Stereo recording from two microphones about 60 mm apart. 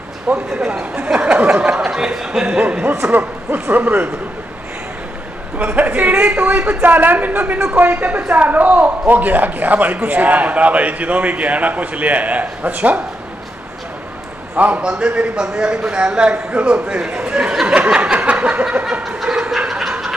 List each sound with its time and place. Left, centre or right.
0.3 s a man's voice: right
0.9 s a sound: right
2.8 s a man's voice: right
3.1 s a man's voice: right
5.6 s a man's voice: right
14.8 s a man's voice: centre
17.2 s a sound: centre
19.0 s snicker: centre